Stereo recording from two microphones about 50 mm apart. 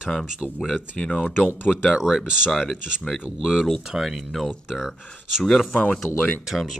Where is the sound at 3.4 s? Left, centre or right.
Centre.